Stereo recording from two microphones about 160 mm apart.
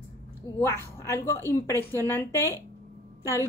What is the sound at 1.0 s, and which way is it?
Speech, 20° left (ahead or behind).